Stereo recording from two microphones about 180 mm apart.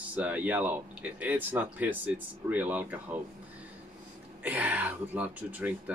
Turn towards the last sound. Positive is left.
turn(degrees=-10)  # may be behind; listen again after turning